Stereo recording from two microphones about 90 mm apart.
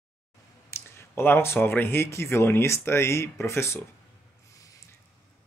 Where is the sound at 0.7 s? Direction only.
30° left (ahead or behind).